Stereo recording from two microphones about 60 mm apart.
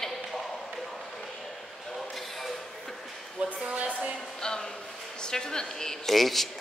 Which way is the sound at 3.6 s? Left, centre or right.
Centre.